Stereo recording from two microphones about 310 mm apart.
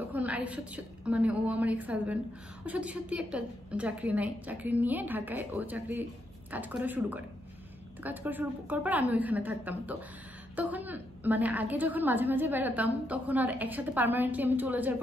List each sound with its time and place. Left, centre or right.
0.1 s a woman's voice: centre